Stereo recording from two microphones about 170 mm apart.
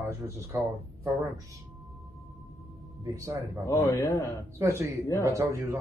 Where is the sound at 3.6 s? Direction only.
20° left (ahead or behind).